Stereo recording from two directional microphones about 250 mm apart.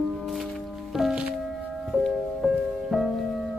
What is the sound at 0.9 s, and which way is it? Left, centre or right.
Music, centre.